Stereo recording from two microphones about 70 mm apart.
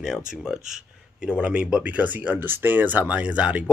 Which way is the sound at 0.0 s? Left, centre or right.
Centre.